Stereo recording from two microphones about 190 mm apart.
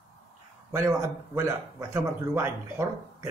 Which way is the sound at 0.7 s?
15° right (ahead or behind).